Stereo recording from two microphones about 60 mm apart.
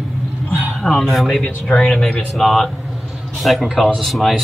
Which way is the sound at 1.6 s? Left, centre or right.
Centre.